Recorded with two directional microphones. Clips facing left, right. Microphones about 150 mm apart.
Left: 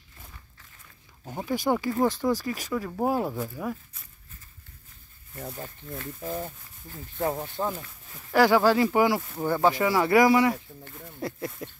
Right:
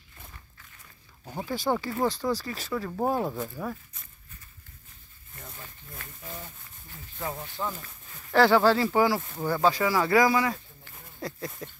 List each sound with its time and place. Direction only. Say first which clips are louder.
1.4 s speech: left 2 dB; 15° left (ahead or behind)
6.2 s speech: left 9 dB; 55° left (ahead or behind)
6.9 s speech: left 7 dB; 45° left (ahead or behind)
8.3 s speech: even; 10° left (ahead or behind)
11.1 s a sound: left 3 dB; 25° left (ahead or behind)